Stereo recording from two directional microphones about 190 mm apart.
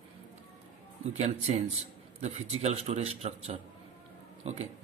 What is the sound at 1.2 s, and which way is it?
A man's voice, 35° right (ahead or behind).